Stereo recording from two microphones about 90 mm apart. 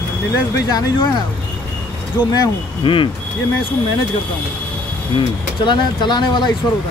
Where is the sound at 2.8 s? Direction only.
70° left (ahead or behind).